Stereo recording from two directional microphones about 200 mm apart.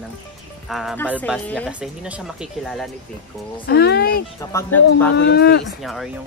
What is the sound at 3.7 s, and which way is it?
Speech, 55° left (ahead or behind).